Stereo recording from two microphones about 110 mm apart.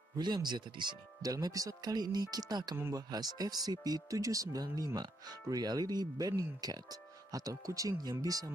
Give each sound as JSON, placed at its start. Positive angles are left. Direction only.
{"t": 0.2, "sound": "speech", "side_deg": -40}